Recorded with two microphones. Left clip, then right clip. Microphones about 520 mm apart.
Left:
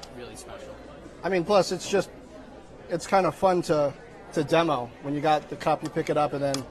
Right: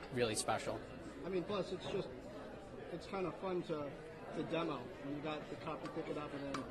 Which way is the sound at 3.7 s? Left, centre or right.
Left.